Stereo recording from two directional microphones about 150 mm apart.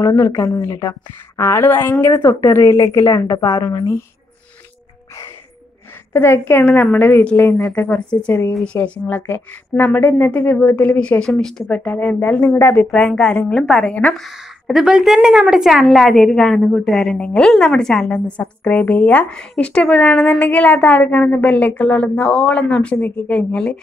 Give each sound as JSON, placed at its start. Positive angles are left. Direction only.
{"t": 0.0, "sound": "a woman's voice", "side_deg": 20}
{"t": 6.1, "sound": "a woman's voice", "side_deg": 15}